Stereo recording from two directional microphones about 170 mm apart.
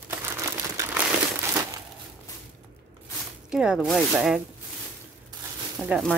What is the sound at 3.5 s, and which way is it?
Speech, 5° right (ahead or behind).